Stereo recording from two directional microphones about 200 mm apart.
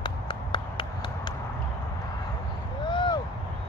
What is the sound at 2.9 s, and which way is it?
Vehicle, 25° left (ahead or behind).